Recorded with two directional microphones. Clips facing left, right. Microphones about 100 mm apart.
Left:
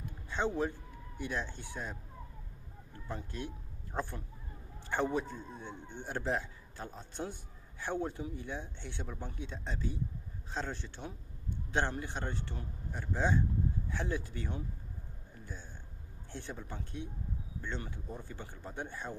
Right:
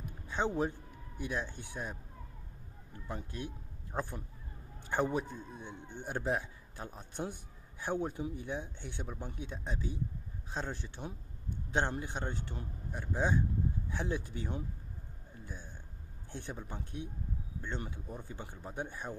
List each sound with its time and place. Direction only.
0.3 s a man's voice: 20° right (ahead or behind)
3.1 s a man's voice: 10° right (ahead or behind)
16.3 s a man's voice: 20° right (ahead or behind)